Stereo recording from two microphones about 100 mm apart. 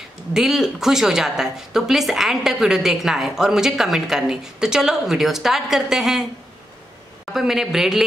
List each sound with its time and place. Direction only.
0.3 s speech: 5° right (ahead or behind)
7.3 s speech: 5° right (ahead or behind)